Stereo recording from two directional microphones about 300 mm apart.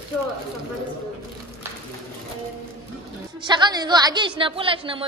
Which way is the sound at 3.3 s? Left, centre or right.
Centre.